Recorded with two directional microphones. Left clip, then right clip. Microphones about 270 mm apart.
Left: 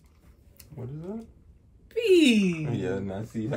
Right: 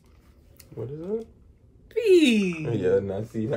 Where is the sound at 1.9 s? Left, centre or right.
Centre.